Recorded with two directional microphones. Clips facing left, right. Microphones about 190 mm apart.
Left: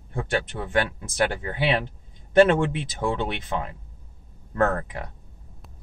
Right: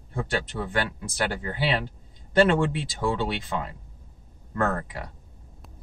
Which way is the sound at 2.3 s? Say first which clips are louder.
Left 3 dB; 20° left (ahead or behind).